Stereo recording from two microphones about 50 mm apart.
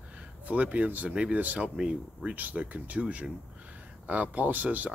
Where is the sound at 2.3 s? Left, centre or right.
Right.